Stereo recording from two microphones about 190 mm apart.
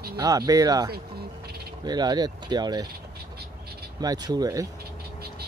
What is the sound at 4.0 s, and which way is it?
Speech, 20° right (ahead or behind).